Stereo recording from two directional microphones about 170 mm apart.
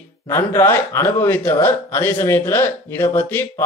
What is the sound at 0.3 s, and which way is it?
Speech, 15° left (ahead or behind).